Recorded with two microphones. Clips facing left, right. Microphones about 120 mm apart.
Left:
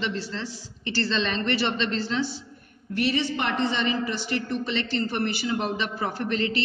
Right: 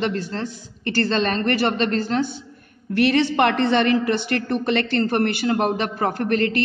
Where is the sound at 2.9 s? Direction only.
70° right (ahead or behind); by 6.6 s 55° right (ahead or behind).